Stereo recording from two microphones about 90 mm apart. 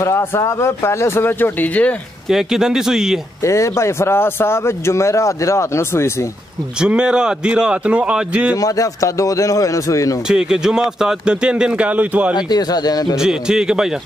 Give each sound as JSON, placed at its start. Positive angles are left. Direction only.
{"t": 0.0, "sound": "speech", "side_deg": 30}
{"t": 2.2, "sound": "speech", "side_deg": -5}
{"t": 3.4, "sound": "speech", "side_deg": 35}
{"t": 6.8, "sound": "speech", "side_deg": -10}
{"t": 8.5, "sound": "speech", "side_deg": 40}
{"t": 10.2, "sound": "speech", "side_deg": -5}
{"t": 12.4, "sound": "speech", "side_deg": 50}
{"t": 13.1, "sound": "speech", "side_deg": -5}